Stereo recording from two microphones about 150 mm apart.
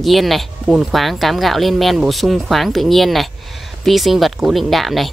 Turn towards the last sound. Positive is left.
turn(degrees=0)  # may be behind; listen again after turning